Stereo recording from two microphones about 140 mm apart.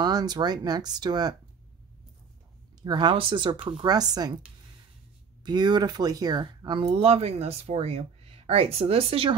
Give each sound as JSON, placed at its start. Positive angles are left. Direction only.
{"t": 0.0, "sound": "speech", "side_deg": -30}
{"t": 2.8, "sound": "speech", "side_deg": -35}
{"t": 5.4, "sound": "speech", "side_deg": -30}